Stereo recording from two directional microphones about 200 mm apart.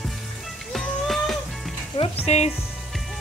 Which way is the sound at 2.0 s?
30° left (ahead or behind).